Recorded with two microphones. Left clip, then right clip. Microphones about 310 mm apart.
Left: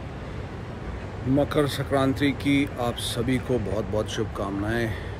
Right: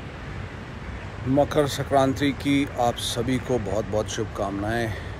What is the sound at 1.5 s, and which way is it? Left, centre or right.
Speech, centre.